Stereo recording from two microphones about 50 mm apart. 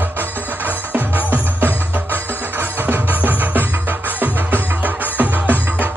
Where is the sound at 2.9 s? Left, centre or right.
Right.